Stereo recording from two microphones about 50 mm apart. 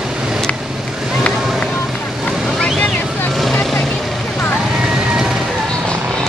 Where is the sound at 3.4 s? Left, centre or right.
Centre.